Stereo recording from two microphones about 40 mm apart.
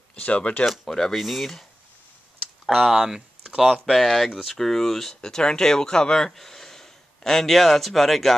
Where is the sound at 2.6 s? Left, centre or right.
Centre.